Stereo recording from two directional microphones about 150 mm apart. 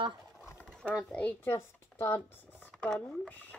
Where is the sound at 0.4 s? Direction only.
15° left (ahead or behind).